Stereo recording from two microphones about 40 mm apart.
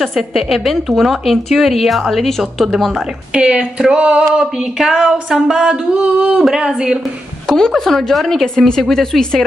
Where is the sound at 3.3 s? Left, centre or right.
Right.